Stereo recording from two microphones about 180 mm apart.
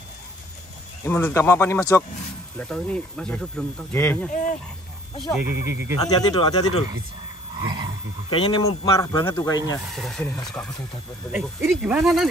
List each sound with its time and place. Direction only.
1.0 s speech: 10° left (ahead or behind)
2.5 s speech: 5° left (ahead or behind)
4.3 s speech: 50° left (ahead or behind)
5.3 s speech: 10° right (ahead or behind)
6.0 s speech: 25° left (ahead or behind)
7.6 s a sound: 25° right (ahead or behind)
8.3 s speech: 25° left (ahead or behind)
9.9 s speech: centre (ahead or behind)